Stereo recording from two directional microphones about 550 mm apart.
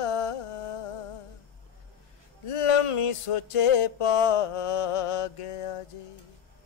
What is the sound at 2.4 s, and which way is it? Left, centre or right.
Music, left.